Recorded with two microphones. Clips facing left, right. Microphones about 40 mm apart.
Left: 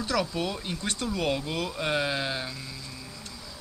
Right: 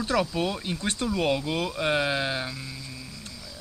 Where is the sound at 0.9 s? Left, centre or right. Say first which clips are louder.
Right 3 dB; right.